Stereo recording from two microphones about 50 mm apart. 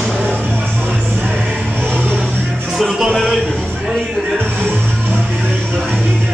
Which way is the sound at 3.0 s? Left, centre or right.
Centre.